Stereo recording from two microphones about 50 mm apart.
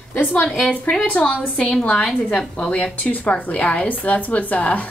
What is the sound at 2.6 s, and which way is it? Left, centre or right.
A woman's voice, left.